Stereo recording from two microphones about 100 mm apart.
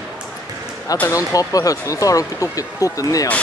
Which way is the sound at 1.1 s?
35° left (ahead or behind).